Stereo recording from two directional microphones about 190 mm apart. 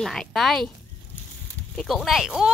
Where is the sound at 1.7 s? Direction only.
Centre (ahead or behind).